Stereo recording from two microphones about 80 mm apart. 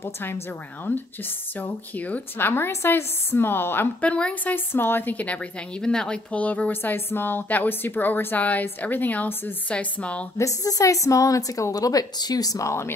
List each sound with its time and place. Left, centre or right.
1.6 s a woman's voice: centre
4.0 s a woman's voice: centre
4.7 s a woman's voice: left
10.3 s a woman's voice: left